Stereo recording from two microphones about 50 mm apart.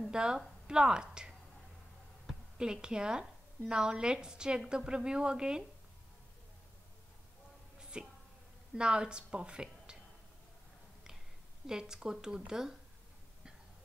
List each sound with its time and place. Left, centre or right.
0.1 s a woman's voice: centre
7.9 s a woman's voice: centre
11.6 s a woman's voice: centre